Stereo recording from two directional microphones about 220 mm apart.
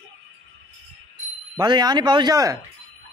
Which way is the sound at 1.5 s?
20° right (ahead or behind).